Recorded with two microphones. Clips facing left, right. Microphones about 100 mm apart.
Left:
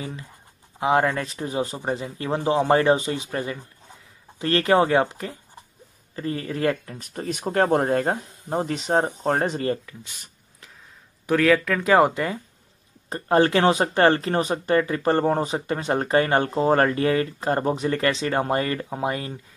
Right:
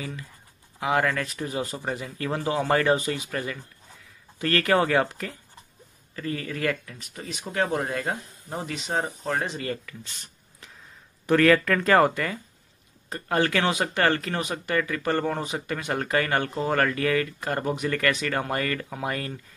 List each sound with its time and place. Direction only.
0.0 s speech: 25° left (ahead or behind)
9.8 s speech: 15° left (ahead or behind)